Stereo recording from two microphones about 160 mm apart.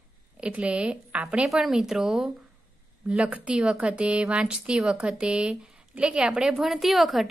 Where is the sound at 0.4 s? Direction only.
5° right (ahead or behind).